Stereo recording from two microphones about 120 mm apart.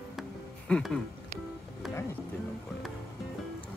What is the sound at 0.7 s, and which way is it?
Speech, 5° left (ahead or behind).